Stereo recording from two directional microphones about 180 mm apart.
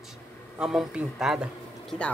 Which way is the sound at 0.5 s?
5° right (ahead or behind).